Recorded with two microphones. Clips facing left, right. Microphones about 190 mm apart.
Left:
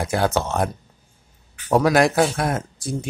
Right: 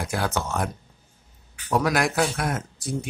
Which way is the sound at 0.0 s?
25° left (ahead or behind).